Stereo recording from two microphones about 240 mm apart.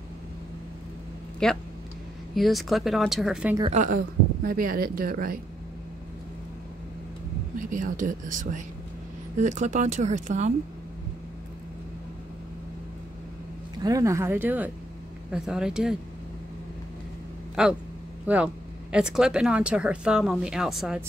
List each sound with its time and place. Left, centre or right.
1.4 s speech: centre
3.7 s speech: right
7.5 s speech: right
13.8 s speech: centre
17.6 s speech: centre